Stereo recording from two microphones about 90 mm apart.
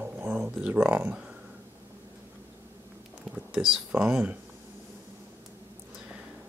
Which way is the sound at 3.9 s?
15° right (ahead or behind).